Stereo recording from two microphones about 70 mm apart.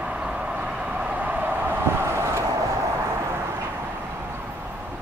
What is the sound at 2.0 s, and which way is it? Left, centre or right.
Vehicle, right.